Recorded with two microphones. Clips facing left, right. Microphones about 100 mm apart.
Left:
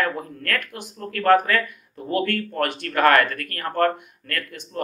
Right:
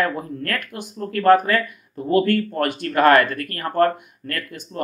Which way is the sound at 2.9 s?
20° right (ahead or behind).